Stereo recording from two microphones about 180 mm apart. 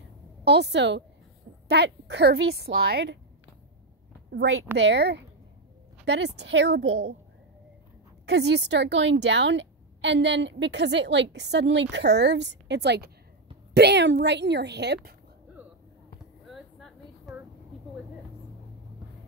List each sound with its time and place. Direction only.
0.5 s a woman's voice: 70° right (ahead or behind)
4.3 s a woman's voice: 80° right
8.3 s a woman's voice: 70° right (ahead or behind)
16.4 s a sound: centre (ahead or behind)